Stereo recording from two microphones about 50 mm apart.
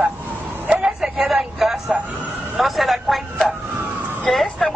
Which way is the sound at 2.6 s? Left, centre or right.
Centre.